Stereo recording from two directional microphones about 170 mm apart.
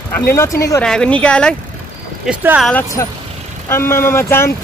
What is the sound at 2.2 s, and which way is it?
Speech, 5° right (ahead or behind).